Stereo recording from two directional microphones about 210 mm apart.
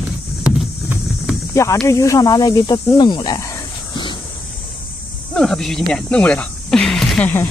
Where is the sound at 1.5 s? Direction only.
15° left (ahead or behind).